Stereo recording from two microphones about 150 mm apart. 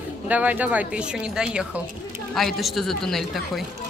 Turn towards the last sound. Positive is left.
turn(degrees=0)  # may be behind; listen again after turning